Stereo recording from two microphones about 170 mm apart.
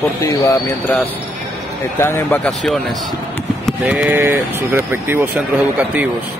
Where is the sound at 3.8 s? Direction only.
10° right (ahead or behind).